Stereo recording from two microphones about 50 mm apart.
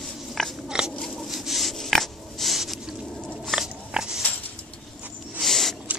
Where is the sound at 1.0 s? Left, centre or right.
Centre.